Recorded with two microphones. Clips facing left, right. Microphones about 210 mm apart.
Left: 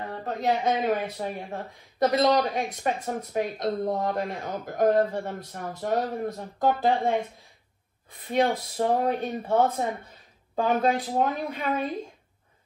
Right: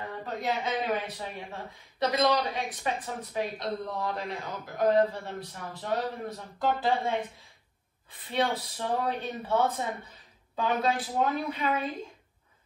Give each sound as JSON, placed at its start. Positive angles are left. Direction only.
{"t": 0.1, "sound": "speech", "side_deg": 50}
{"t": 8.3, "sound": "a woman's voice", "side_deg": 45}